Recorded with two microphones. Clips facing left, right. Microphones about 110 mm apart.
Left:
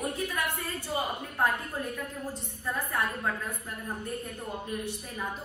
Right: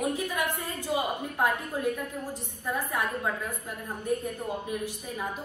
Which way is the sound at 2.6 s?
15° right (ahead or behind).